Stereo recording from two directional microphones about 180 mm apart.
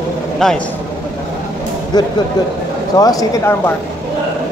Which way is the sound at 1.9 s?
20° left (ahead or behind).